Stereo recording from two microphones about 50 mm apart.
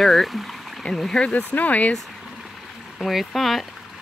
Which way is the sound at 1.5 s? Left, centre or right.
Left.